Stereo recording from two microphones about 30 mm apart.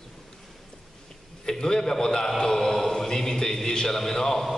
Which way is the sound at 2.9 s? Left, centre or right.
Centre.